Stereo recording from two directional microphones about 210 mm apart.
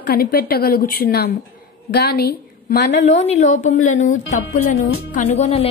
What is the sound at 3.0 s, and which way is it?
Speech, 35° left (ahead or behind).